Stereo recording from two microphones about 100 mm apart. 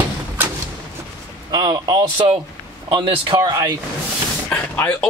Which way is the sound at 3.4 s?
35° right (ahead or behind).